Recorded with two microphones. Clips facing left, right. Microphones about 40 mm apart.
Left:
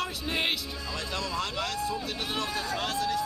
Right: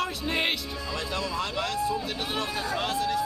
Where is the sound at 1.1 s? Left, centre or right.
Centre.